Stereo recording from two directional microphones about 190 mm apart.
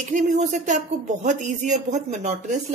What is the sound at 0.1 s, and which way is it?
Speech, 40° right (ahead or behind).